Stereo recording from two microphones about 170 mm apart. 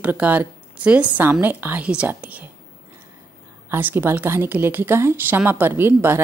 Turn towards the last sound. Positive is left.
turn(degrees=-15)  # may be behind; listen again after turning